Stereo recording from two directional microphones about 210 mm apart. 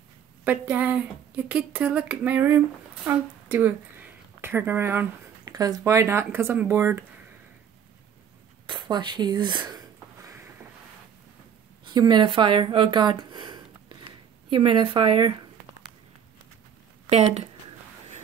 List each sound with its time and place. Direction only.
0.5 s speech: 5° right (ahead or behind)
8.6 s speech: 20° right (ahead or behind)
10.2 s a sound: 15° right (ahead or behind)
11.8 s speech: 20° right (ahead or behind)
17.1 s speech: 30° right (ahead or behind)